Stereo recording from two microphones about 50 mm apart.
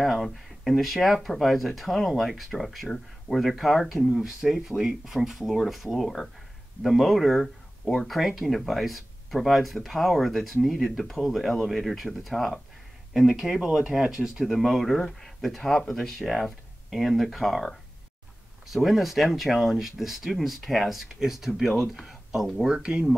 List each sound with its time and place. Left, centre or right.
0.0 s speech: centre
14.5 s speech: centre
22.8 s speech: centre